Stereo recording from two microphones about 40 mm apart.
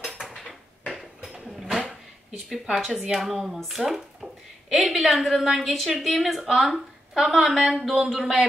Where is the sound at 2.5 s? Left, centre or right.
Centre.